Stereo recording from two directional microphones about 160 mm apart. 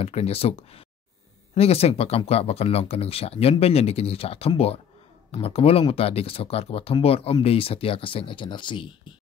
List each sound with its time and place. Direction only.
0.0 s speech: 40° left (ahead or behind)